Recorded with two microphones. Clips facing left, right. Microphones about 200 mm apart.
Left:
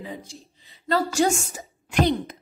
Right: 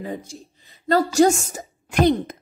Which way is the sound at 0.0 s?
50° right (ahead or behind).